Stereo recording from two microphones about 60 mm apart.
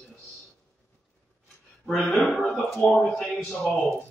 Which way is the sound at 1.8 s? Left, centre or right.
Centre.